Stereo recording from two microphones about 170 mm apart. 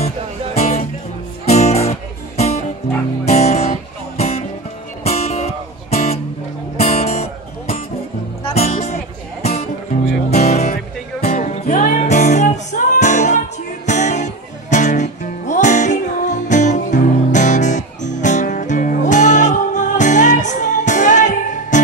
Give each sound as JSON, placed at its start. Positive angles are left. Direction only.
{"t": 0.6, "sound": "music", "side_deg": 40}
{"t": 3.3, "sound": "guitar", "side_deg": 40}
{"t": 4.2, "sound": "music", "side_deg": 40}